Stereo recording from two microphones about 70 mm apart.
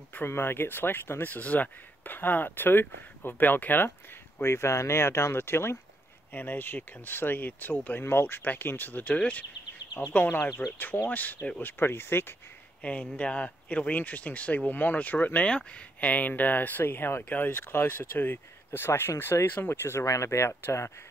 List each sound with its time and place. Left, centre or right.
0.2 s speech: left
4.4 s speech: left
12.8 s speech: centre; by 20.9 s left